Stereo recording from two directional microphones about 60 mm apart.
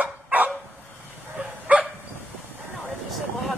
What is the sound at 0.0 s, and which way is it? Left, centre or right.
Dog, right.